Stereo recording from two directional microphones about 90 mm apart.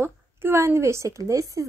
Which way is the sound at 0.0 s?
30° right (ahead or behind).